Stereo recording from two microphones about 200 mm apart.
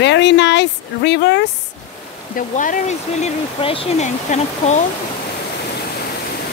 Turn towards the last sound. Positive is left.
turn(degrees=35)  # may be behind; listen again after turning